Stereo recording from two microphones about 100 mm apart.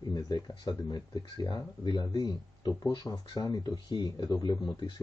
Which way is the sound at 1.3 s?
50° left (ahead or behind).